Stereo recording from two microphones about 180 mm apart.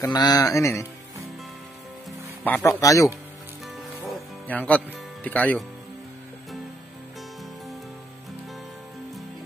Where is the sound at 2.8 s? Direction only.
20° left (ahead or behind).